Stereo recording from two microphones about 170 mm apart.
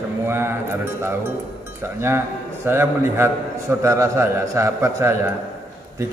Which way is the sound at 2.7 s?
15° right (ahead or behind).